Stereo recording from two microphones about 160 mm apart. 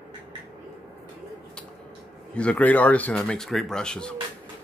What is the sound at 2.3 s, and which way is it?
Speech, 10° left (ahead or behind).